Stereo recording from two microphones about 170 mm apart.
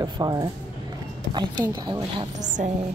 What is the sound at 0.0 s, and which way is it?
Speech, 25° right (ahead or behind).